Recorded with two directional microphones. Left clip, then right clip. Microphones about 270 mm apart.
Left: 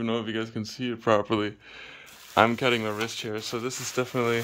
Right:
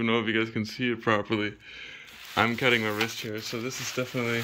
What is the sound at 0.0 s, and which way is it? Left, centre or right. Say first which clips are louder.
Speech: right 4 dB; centre.